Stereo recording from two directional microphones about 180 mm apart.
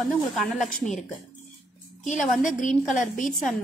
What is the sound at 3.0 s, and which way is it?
Speech, 45° left (ahead or behind).